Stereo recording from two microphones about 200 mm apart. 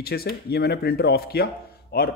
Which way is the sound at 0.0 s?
50° left (ahead or behind).